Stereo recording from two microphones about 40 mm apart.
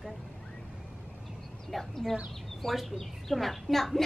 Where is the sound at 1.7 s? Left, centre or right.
Centre.